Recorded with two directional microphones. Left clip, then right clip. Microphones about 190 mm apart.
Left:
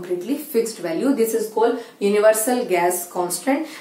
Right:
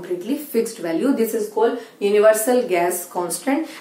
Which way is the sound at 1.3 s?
Centre (ahead or behind).